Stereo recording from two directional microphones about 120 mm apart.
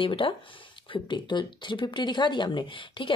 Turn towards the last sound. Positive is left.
turn(degrees=45)  # may be behind; listen again after turning